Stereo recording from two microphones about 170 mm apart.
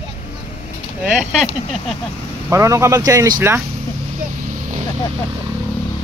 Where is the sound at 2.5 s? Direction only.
15° right (ahead or behind).